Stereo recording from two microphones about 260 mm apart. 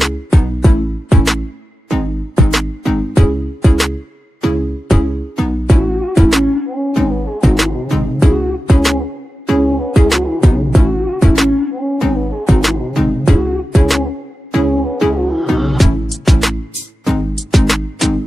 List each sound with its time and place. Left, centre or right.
0.0 s music: centre